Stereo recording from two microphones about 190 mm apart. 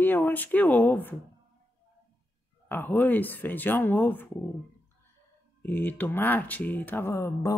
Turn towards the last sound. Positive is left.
turn(degrees=15)  # may be behind; listen again after turning